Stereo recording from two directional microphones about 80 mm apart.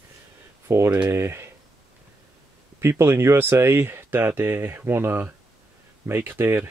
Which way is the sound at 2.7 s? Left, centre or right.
Right.